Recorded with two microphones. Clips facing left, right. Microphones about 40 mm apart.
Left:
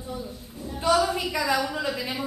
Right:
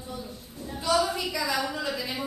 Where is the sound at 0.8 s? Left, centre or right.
Left.